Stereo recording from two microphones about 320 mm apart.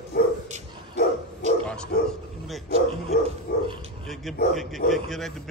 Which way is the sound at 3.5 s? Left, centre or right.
Left.